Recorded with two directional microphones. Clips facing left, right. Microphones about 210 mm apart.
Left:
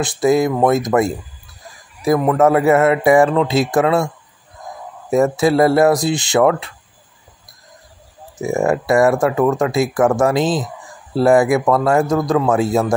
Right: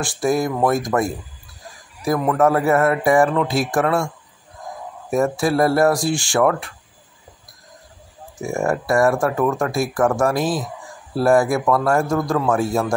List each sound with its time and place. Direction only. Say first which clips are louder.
0.0 s speech: left 5 dB; 20° left (ahead or behind)
5.1 s speech: left 4 dB; 20° left (ahead or behind)
8.4 s speech: left 4 dB; 20° left (ahead or behind)